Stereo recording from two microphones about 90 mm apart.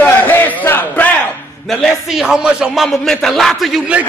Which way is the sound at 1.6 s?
Centre (ahead or behind).